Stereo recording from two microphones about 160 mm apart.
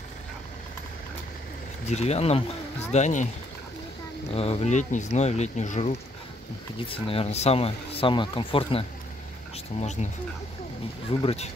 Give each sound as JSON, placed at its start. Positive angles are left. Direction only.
{"t": 1.9, "sound": "speech", "side_deg": 45}
{"t": 4.3, "sound": "speech", "side_deg": 40}
{"t": 11.2, "sound": "speech", "side_deg": 40}